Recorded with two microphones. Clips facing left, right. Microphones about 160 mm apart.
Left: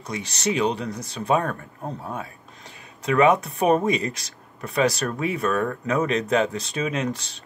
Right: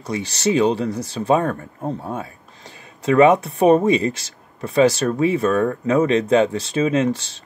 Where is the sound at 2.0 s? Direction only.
25° right (ahead or behind).